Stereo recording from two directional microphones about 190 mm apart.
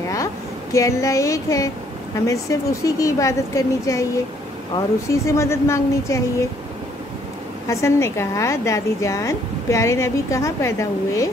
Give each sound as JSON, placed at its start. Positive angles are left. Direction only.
{"t": 0.7, "sound": "a woman's voice", "side_deg": 15}
{"t": 7.6, "sound": "a woman's voice", "side_deg": 15}